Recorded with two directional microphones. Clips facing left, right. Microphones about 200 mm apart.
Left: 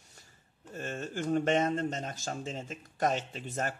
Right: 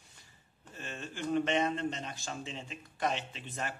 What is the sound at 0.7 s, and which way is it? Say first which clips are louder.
Speech: left 6 dB; 45° left (ahead or behind).